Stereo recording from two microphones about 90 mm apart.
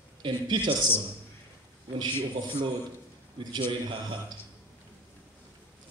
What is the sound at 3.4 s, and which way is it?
Speech, 60° right (ahead or behind).